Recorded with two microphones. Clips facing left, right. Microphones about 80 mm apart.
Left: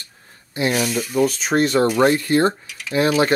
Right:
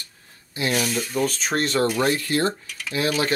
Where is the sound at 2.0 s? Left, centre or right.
Left.